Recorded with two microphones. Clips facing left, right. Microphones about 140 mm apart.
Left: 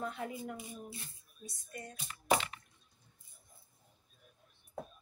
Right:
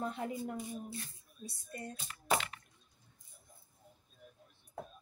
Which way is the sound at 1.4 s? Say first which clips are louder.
Right 2 dB; 30° right (ahead or behind).